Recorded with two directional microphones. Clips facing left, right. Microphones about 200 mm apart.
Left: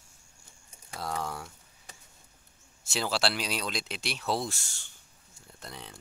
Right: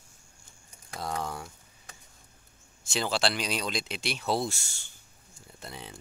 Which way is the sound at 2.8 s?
5° left (ahead or behind).